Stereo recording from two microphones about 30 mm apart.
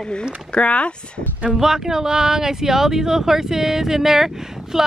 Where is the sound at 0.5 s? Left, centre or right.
Left.